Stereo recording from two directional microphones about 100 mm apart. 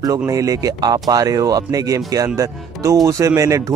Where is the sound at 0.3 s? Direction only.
35° right (ahead or behind).